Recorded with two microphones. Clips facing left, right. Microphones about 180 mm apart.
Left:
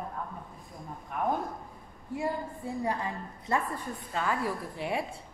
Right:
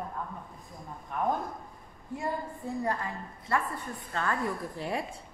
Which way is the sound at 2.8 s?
15° left (ahead or behind).